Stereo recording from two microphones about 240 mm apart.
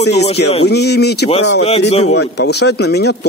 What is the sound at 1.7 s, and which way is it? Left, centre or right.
Speech, left.